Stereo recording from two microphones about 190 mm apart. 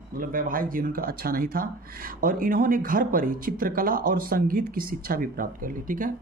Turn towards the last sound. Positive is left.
turn(degrees=-45)  # may be behind; listen again after turning